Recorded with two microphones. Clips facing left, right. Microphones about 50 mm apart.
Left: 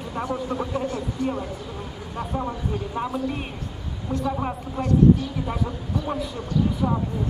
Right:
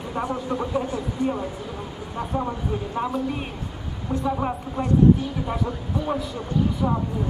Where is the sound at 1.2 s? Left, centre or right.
Right.